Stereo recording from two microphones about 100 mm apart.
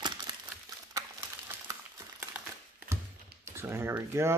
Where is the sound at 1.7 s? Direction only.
35° right (ahead or behind).